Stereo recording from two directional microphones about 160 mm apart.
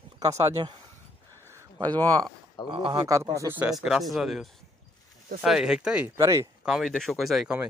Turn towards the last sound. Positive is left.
turn(degrees=-5)  # may be behind; listen again after turning